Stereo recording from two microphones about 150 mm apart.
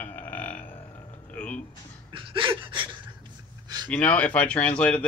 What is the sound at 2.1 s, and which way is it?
Gasp, 35° right (ahead or behind).